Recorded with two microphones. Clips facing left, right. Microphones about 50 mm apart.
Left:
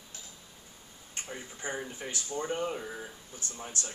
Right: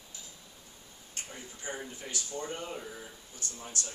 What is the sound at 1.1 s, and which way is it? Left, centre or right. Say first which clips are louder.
Speech: left 4 dB; left.